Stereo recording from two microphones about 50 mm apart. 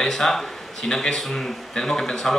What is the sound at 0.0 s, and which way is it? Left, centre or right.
A man's voice, centre.